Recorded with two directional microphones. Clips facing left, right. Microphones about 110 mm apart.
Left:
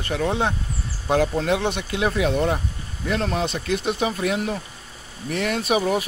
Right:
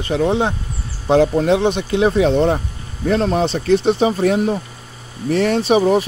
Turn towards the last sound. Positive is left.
turn(degrees=-30)  # may be behind; listen again after turning